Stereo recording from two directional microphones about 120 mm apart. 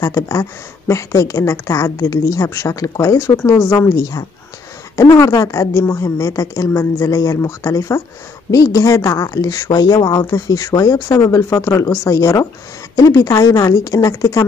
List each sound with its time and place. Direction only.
0.0 s a woman's voice: 25° left (ahead or behind)